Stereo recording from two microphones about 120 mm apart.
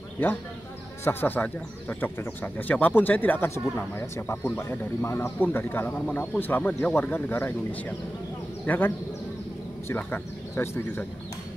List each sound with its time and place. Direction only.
1.0 s speech: 15° left (ahead or behind)